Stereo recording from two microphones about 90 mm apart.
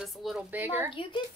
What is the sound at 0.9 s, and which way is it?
Speech, 75° left (ahead or behind).